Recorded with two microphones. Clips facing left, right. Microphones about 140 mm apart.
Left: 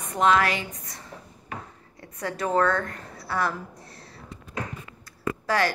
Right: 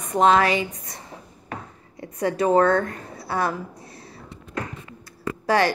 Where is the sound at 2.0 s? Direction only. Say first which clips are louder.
Right 7 dB; 20° right (ahead or behind).